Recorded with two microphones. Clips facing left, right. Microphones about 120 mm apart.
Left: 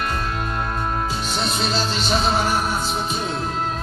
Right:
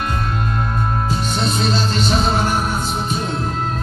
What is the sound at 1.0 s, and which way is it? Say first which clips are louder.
Music: right 4 dB; centre (ahead or behind).